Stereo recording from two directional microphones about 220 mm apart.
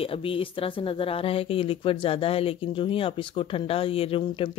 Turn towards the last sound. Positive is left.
turn(degrees=25)  # may be behind; listen again after turning